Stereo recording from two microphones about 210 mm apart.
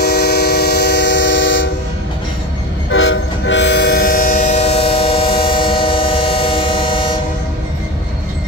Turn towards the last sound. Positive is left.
turn(degrees=25)  # may be behind; listen again after turning